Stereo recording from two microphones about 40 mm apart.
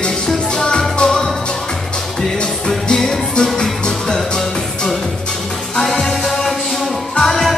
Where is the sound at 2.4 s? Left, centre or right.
Left.